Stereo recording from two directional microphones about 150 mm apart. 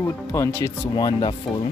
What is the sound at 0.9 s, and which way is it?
Speech, 25° left (ahead or behind).